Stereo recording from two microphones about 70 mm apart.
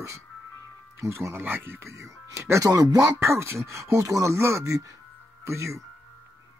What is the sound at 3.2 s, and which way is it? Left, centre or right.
Speech, right.